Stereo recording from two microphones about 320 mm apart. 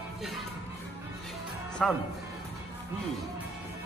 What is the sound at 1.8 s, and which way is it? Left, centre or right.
Speech, centre.